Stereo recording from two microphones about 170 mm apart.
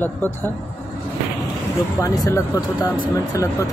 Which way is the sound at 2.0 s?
20° left (ahead or behind).